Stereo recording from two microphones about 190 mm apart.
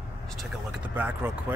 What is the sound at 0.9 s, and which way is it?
Speech, 10° right (ahead or behind).